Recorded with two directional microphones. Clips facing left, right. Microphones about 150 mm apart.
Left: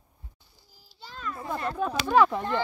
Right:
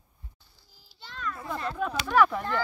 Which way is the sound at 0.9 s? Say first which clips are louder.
Left 2 dB; 5° left (ahead or behind).